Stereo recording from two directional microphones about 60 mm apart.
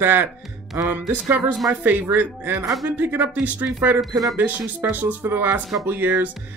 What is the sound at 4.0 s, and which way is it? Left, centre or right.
Speech, centre.